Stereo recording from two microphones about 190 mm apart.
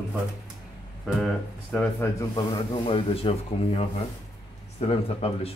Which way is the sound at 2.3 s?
30° left (ahead or behind).